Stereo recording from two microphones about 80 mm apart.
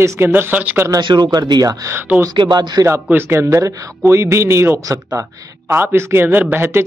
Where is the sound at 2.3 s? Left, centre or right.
Right.